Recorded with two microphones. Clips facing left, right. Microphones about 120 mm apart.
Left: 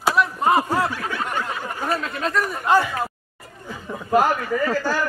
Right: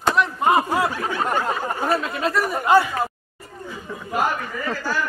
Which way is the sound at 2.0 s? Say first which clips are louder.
Right 1 dB; 5° right (ahead or behind).